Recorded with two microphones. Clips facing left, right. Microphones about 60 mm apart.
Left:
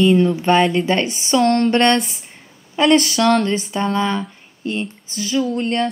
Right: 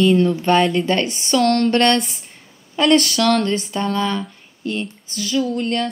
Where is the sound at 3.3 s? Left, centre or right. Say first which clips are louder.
Left 1 dB; centre.